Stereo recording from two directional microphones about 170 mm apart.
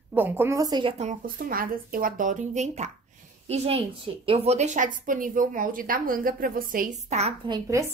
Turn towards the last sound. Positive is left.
turn(degrees=-20)  # may be behind; listen again after turning